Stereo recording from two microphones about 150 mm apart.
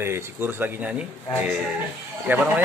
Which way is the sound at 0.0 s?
15° right (ahead or behind).